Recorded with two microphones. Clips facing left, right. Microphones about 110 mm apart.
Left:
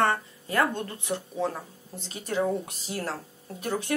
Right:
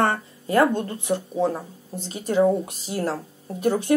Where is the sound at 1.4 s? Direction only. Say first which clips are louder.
Right 6 dB; 20° right (ahead or behind).